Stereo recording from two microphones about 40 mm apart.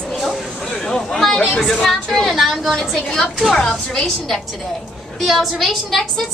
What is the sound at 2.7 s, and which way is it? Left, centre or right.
A woman's voice, centre.